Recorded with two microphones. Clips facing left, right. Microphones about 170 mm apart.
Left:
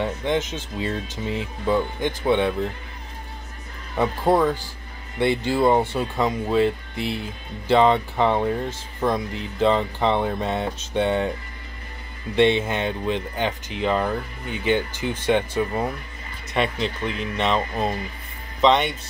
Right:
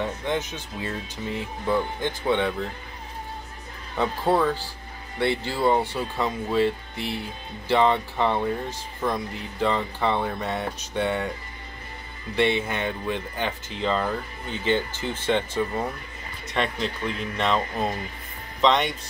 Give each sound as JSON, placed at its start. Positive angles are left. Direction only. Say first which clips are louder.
{"t": 0.2, "sound": "speech", "louder": "left 4 dB", "side_deg": 20}
{"t": 3.9, "sound": "speech", "louder": "left 3 dB", "side_deg": 15}
{"t": 12.4, "sound": "speech", "louder": "left 4 dB", "side_deg": 20}